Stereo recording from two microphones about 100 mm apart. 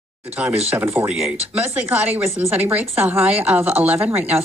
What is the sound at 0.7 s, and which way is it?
A woman's voice, 20° right (ahead or behind).